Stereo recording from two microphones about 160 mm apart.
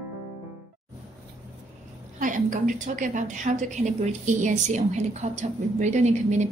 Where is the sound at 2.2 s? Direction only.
55° right (ahead or behind).